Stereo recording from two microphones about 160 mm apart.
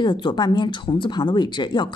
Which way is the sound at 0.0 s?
30° left (ahead or behind).